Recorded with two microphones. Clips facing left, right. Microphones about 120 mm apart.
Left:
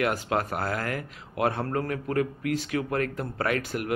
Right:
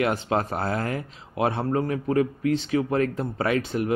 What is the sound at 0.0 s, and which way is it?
Speech, 25° right (ahead or behind).